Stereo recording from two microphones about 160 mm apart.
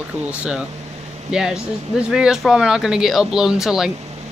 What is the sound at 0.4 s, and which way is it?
Speech, 5° right (ahead or behind).